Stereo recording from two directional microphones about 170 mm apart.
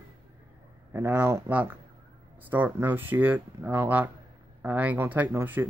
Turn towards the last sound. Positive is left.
turn(degrees=-10)  # may be behind; listen again after turning